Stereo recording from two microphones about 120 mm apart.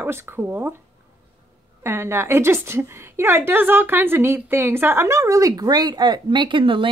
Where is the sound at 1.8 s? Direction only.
20° right (ahead or behind).